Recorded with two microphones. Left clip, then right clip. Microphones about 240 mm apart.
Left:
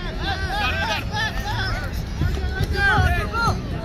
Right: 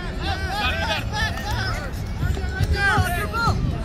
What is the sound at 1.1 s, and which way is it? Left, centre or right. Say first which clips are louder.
Vehicle: left 1 dB; right.